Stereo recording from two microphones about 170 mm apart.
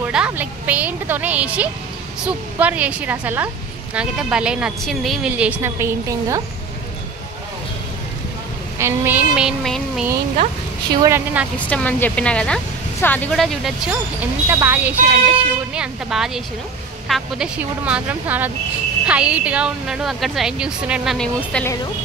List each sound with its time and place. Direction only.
0.0 s speech: 10° right (ahead or behind)
8.7 s a woman's voice: 15° right (ahead or behind)
10.9 s a woman's voice: 25° right (ahead or behind)
11.5 s a woman's voice: 10° left (ahead or behind)
14.5 s a woman's voice: 10° right (ahead or behind); by 21.7 s 5° left (ahead or behind)